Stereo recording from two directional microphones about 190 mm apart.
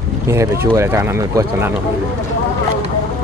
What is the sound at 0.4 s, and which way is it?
Speech, 15° right (ahead or behind).